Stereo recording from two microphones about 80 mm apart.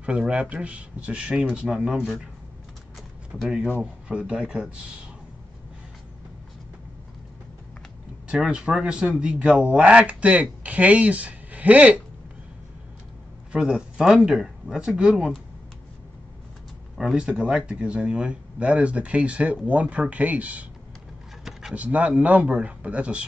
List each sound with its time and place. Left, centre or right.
0.0 s speech: centre
3.4 s speech: centre
8.3 s speech: centre
13.5 s speech: centre
16.9 s speech: centre
21.5 s a sound: centre
21.7 s speech: centre